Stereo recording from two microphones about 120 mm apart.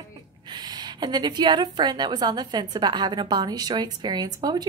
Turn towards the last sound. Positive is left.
turn(degrees=-35)  # may be behind; listen again after turning